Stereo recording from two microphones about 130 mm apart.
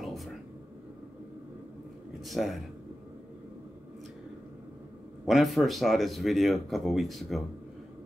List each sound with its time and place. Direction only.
0.0 s a sound: centre (ahead or behind)
2.2 s speech: centre (ahead or behind)
5.2 s speech: centre (ahead or behind)